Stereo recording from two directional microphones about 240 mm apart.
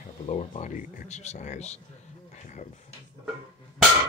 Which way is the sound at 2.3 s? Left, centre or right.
Left.